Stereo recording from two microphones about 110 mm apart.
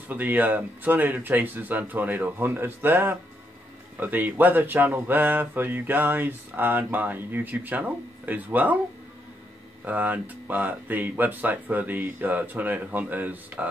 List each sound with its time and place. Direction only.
0.1 s speech: 15° right (ahead or behind)
9.8 s speech: 15° right (ahead or behind)